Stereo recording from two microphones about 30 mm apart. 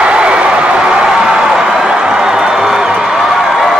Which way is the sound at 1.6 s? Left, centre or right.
Right.